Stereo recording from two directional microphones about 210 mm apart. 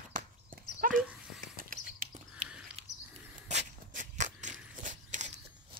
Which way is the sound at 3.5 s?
35° right (ahead or behind).